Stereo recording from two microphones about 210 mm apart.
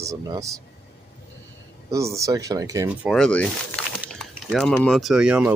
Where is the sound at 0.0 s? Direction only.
15° right (ahead or behind).